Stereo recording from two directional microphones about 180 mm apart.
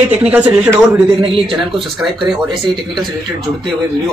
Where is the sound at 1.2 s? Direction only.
30° right (ahead or behind).